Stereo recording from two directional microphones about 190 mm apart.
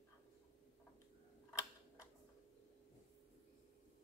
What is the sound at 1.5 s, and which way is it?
Tick-tock, 20° left (ahead or behind).